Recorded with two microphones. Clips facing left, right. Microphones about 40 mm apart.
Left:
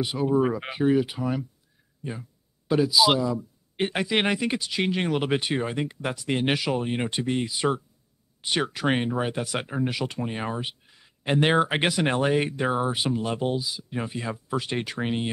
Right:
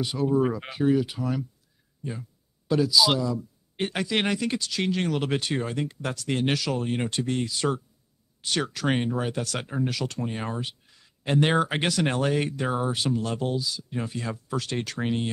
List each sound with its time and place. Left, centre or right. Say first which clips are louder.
0.0 s speech: left 1 dB; centre
2.7 s speech: left 1 dB; centre